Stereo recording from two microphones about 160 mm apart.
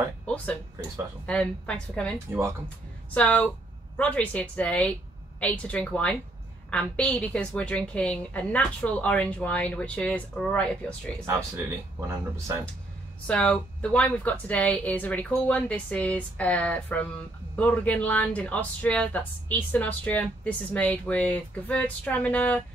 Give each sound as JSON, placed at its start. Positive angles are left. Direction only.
{"t": 1.2, "sound": "a woman's voice", "side_deg": 5}
{"t": 2.1, "sound": "speech", "side_deg": -15}
{"t": 3.2, "sound": "a woman's voice", "side_deg": 10}
{"t": 12.1, "sound": "speech", "side_deg": -15}
{"t": 13.3, "sound": "a woman's voice", "side_deg": 5}